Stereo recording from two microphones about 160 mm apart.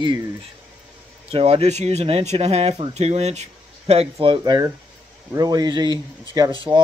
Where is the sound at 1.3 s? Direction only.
40° right (ahead or behind).